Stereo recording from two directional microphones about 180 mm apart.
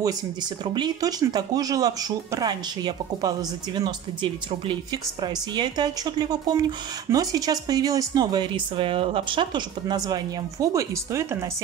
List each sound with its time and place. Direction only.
0.7 s speech: 20° right (ahead or behind)